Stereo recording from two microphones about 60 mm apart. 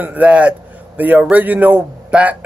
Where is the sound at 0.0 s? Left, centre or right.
Right.